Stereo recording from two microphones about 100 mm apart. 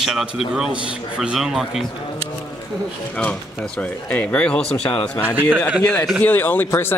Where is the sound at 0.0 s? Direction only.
5° right (ahead or behind).